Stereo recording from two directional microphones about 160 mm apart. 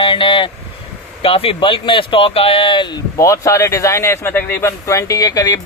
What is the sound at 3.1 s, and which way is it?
Speech, 20° left (ahead or behind).